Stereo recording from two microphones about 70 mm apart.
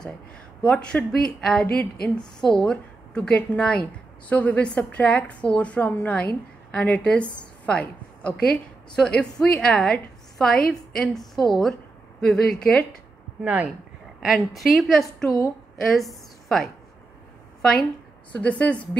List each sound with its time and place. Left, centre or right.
0.7 s a woman's voice: centre
12.3 s a woman's voice: centre
13.4 s speech: right
14.2 s a woman's voice: centre